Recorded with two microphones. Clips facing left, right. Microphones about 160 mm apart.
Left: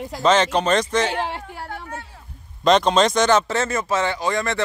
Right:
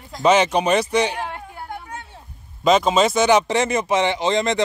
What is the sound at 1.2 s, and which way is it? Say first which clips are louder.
Speech: left 2 dB; 90° left.